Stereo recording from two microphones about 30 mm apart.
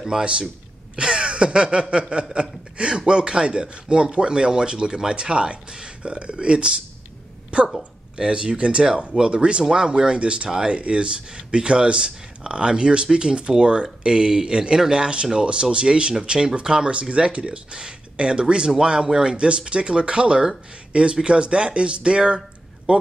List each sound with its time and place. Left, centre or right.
0.2 s speech: right
0.9 s gasp: right
2.3 s speech: right
17.1 s speech: right
19.3 s speech: right